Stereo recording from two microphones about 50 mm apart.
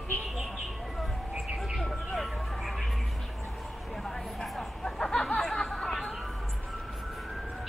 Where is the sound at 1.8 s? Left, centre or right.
Centre.